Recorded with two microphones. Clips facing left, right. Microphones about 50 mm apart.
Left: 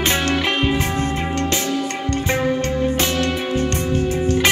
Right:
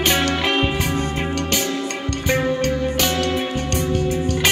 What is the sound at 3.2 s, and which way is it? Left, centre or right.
Music, left.